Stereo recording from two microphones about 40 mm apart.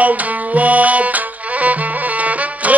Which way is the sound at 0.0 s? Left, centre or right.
Right.